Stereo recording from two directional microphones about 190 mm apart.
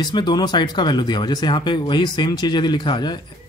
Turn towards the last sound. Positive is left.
turn(degrees=25)  # may be behind; listen again after turning